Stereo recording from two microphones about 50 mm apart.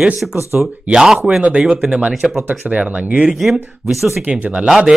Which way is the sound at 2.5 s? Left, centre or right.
Right.